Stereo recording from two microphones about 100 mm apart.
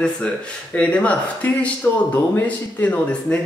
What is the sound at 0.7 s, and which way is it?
Speech, 10° left (ahead or behind).